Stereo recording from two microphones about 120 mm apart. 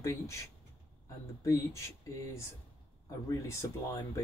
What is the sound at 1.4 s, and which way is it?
Speech, 25° left (ahead or behind).